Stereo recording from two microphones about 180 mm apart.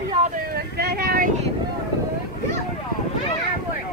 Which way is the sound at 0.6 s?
60° right (ahead or behind).